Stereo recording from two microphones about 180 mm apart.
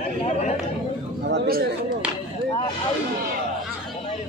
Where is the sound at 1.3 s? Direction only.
55° right (ahead or behind).